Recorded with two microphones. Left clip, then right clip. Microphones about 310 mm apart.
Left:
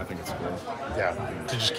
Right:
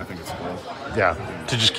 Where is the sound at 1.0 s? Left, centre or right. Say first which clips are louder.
Right 8 dB; right.